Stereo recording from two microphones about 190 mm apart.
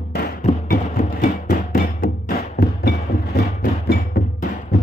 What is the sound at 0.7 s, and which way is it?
Music, 45° left (ahead or behind).